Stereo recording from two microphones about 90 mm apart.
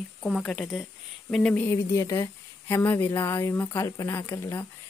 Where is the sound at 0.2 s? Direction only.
5° left (ahead or behind).